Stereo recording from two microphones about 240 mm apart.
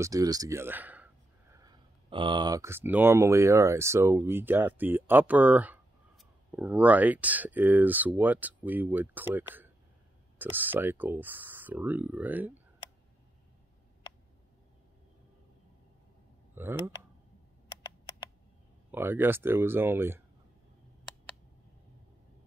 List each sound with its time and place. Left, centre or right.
0.0 s speech: centre
16.5 s speech: centre
17.6 s typing: centre
18.9 s speech: centre